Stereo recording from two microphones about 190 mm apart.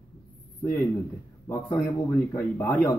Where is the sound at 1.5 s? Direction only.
15° left (ahead or behind).